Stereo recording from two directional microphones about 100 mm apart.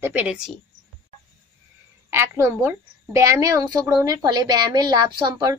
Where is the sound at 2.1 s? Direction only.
25° right (ahead or behind).